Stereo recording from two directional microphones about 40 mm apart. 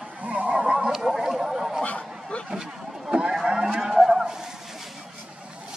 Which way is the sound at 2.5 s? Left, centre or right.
Centre.